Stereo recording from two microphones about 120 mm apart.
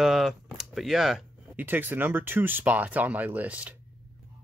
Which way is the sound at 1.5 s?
15° right (ahead or behind).